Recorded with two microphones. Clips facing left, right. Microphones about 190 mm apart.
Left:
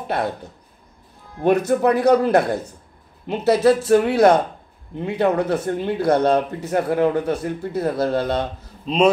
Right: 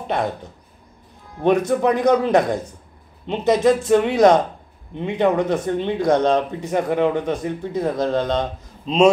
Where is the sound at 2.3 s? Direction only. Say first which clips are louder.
Even; 15° right (ahead or behind).